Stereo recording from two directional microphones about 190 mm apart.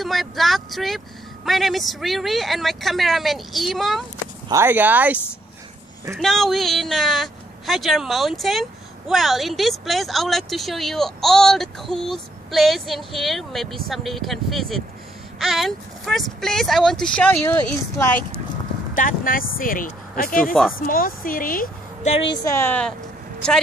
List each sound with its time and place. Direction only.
0.0 s speech: centre (ahead or behind)
4.5 s speech: 15° right (ahead or behind); by 18.2 s 10° left (ahead or behind)
18.9 s a woman's voice: 45° left (ahead or behind)
22.4 s speech: 15° left (ahead or behind)